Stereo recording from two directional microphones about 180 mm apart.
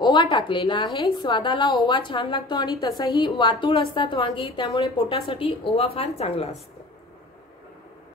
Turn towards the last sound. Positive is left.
turn(degrees=35)  # may be behind; listen again after turning